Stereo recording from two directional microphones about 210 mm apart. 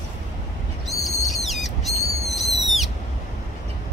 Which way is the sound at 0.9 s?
Centre (ahead or behind).